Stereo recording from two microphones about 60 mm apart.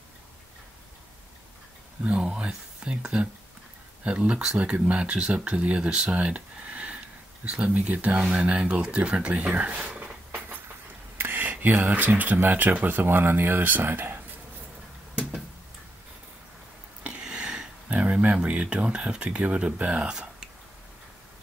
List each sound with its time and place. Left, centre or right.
2.0 s speech: centre
11.1 s a sound: right
12.2 s speech: right
17.0 s speech: centre